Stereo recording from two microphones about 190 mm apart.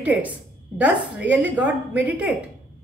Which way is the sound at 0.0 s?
10° right (ahead or behind).